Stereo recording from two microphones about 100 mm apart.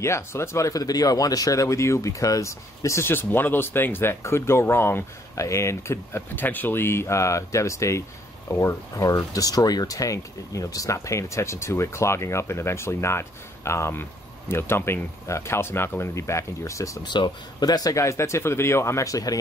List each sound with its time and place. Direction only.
0.0 s speech: 25° left (ahead or behind)
17.0 s speech: 50° left (ahead or behind)